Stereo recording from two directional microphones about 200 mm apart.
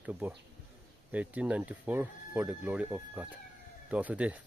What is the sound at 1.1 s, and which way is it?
Speech, 5° right (ahead or behind).